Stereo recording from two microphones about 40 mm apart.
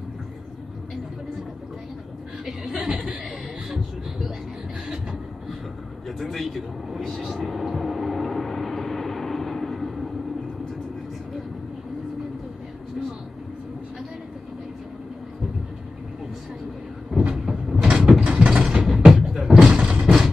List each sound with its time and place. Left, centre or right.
2.4 s chuckle: centre
6.0 s speech: centre
7.3 s vehicle: centre
17.3 s vehicle: centre
17.8 s mechanisms: right
18.5 s mechanisms: centre
18.9 s beatboxing: centre